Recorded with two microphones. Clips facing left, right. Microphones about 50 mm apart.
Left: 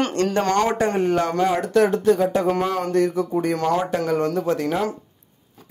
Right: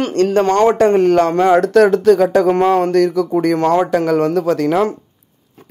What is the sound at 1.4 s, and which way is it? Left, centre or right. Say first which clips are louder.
Speech: right 9 dB; right.